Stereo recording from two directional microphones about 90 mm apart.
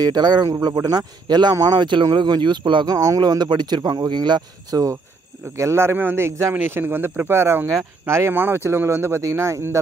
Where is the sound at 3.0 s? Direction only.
45° right (ahead or behind).